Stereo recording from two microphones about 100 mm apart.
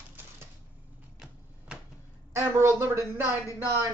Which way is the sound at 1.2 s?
10° right (ahead or behind).